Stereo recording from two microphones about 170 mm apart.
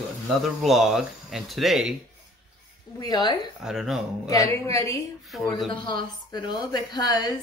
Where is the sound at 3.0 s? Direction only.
25° left (ahead or behind).